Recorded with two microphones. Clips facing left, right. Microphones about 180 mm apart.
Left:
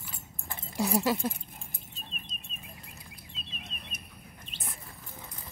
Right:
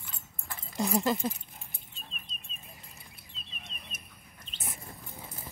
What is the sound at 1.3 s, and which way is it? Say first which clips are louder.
Dog: left 3 dB; 45° left (ahead or behind).